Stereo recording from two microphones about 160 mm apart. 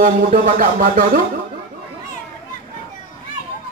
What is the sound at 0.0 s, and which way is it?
Speech, 60° right (ahead or behind).